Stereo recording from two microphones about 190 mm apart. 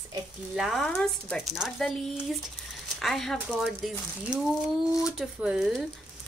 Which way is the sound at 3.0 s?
Centre (ahead or behind).